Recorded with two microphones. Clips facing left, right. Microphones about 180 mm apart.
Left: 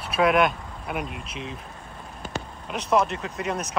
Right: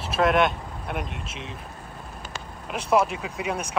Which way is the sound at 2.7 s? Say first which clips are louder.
Right 1 dB; 5° right (ahead or behind).